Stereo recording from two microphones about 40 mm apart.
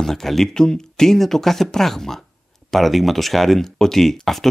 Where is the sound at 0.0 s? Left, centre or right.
Centre.